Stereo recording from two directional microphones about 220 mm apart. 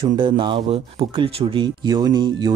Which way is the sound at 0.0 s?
20° right (ahead or behind).